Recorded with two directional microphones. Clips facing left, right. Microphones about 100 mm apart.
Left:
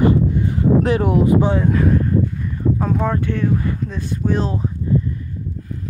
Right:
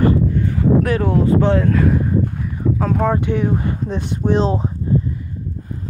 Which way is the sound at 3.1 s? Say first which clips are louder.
Right 3 dB; 15° right (ahead or behind).